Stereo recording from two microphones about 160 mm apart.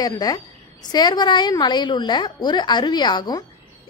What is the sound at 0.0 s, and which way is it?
A woman's voice, 25° left (ahead or behind).